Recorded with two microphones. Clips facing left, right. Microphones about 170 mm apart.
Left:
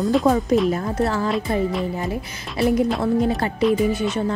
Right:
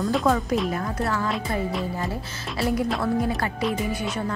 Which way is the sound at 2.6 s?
20° left (ahead or behind).